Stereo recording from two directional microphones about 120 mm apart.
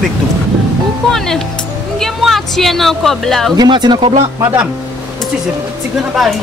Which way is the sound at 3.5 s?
35° right (ahead or behind).